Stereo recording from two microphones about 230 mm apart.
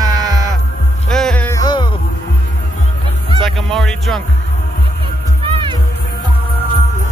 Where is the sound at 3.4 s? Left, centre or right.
Centre.